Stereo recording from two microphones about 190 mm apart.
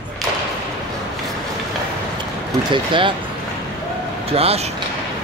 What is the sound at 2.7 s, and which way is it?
Speech, 25° right (ahead or behind).